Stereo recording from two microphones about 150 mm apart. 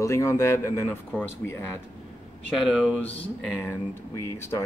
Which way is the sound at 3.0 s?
15° left (ahead or behind).